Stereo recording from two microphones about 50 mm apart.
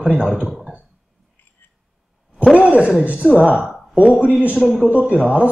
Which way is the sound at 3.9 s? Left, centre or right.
Centre.